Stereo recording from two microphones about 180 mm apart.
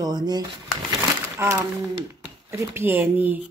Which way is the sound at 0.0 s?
20° right (ahead or behind).